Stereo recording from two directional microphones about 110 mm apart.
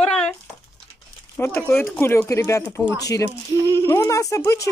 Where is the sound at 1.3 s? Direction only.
20° left (ahead or behind).